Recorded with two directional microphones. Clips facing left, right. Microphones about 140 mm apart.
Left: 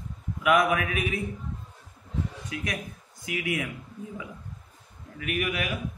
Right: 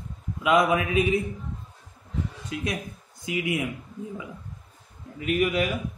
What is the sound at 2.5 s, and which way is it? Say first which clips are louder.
A man's voice: right 4 dB; 25° right (ahead or behind).